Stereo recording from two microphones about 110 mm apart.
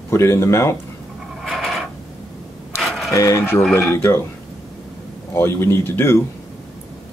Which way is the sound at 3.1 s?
25° left (ahead or behind).